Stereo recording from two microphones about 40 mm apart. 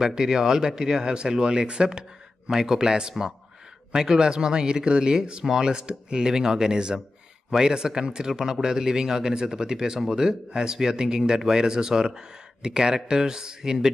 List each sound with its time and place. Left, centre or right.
0.0 s speech: centre
2.5 s speech: centre